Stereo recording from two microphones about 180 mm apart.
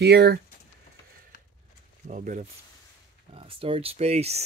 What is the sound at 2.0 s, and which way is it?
Speech, 45° right (ahead or behind).